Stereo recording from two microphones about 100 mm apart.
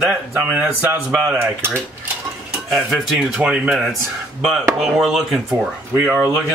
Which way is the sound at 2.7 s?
5° right (ahead or behind).